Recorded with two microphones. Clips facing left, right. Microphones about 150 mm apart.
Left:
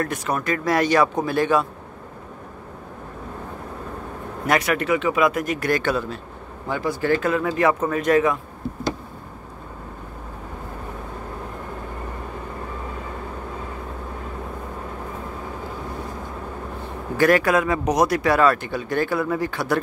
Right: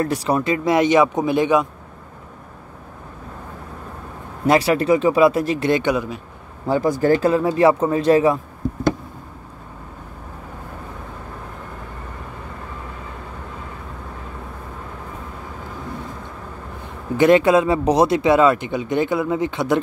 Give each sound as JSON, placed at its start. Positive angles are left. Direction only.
{"t": 0.0, "sound": "speech", "side_deg": -30}
{"t": 4.5, "sound": "speech", "side_deg": -30}
{"t": 6.7, "sound": "speech", "side_deg": -45}
{"t": 17.2, "sound": "speech", "side_deg": -25}